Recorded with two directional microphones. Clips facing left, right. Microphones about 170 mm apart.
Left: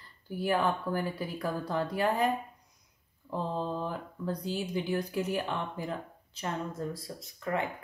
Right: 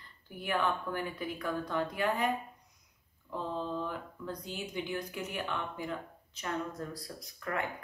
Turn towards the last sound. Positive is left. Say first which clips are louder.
# left 4 dB
turn(degrees=25)  # may be behind; listen again after turning